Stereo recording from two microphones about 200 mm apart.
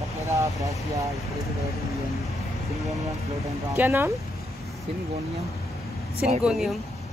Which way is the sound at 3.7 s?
10° right (ahead or behind).